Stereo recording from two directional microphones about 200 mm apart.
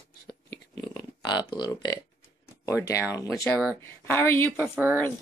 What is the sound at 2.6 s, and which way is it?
Speech, 15° left (ahead or behind).